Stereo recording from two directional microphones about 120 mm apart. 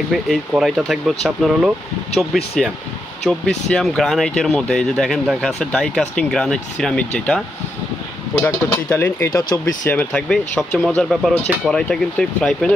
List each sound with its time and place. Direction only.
0.1 s speech: 5° right (ahead or behind)
8.5 s speech: 20° left (ahead or behind); by 12.7 s 5° left (ahead or behind)